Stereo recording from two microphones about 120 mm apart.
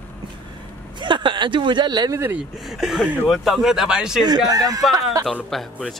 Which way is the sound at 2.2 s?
15° right (ahead or behind).